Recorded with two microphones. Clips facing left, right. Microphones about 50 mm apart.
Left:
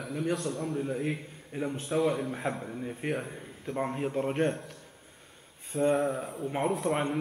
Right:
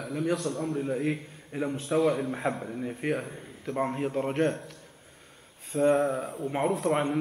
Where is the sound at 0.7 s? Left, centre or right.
Centre.